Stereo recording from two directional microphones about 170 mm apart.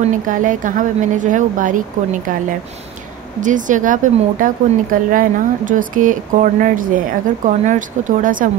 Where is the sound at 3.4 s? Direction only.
50° right (ahead or behind).